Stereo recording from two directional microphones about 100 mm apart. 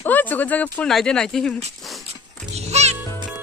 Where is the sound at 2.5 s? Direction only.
90° right.